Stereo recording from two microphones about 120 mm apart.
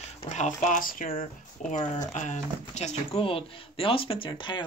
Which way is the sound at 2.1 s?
80° left.